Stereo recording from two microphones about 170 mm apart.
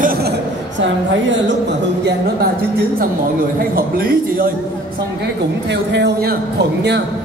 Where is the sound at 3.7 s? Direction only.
60° right (ahead or behind).